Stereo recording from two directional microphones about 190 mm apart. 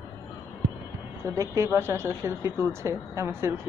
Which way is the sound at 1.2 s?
15° right (ahead or behind).